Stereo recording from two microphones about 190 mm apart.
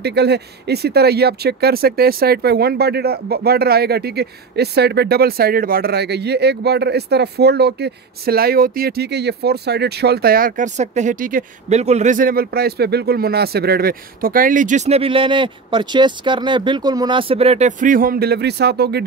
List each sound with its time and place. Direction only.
0.0 s speech: 60° right (ahead or behind)